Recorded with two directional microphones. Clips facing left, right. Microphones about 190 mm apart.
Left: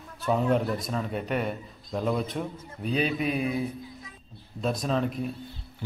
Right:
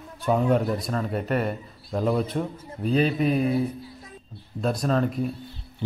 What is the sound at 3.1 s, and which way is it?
Mantra, 40° right (ahead or behind).